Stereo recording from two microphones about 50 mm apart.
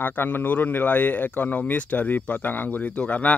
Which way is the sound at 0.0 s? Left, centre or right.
Left.